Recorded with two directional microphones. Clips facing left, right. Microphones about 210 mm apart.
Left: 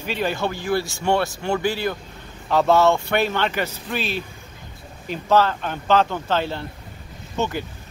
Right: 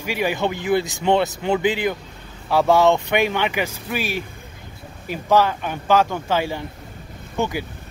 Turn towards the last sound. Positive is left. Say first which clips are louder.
# right 1 dB
turn(degrees=-10)  # may be behind; listen again after turning